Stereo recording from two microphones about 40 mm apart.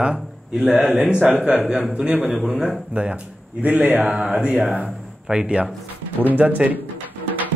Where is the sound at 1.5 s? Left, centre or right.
Right.